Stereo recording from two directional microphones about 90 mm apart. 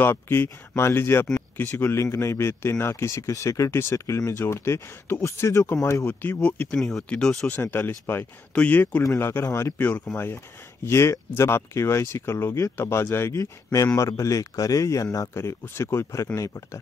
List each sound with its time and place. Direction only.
0.0 s speech: 25° left (ahead or behind)
6.2 s speech: 15° left (ahead or behind)
6.8 s speech: 5° left (ahead or behind)
7.6 s speech: 25° left (ahead or behind)
9.8 s speech: 20° left (ahead or behind)
13.4 s speech: 40° left (ahead or behind)